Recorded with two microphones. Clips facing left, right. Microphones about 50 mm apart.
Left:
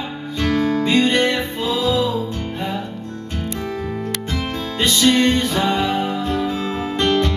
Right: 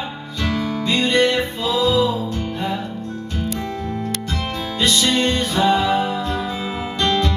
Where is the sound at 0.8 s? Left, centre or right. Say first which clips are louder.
Right 2 dB; left.